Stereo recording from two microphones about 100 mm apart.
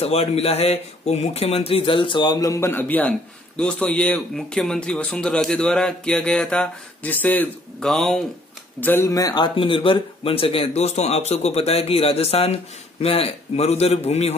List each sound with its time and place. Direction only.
0.0 s speech: 90° left; by 7.1 s 10° left (ahead or behind)
7.1 s speech: 20° left (ahead or behind)
7.8 s speech: 5° left (ahead or behind)
8.8 s speech: 25° left (ahead or behind)
9.1 s speech: 40° left (ahead or behind)
9.6 s speech: 60° left (ahead or behind); by 12.5 s 90° left
13.0 s speech: 75° left (ahead or behind)